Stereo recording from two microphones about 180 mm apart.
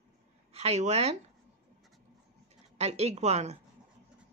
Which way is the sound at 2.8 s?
35° right (ahead or behind).